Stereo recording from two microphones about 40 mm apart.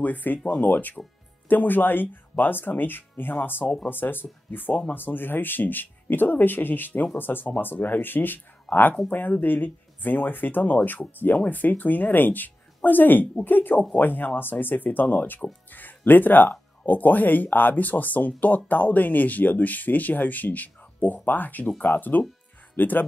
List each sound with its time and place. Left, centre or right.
0.0 s speech: left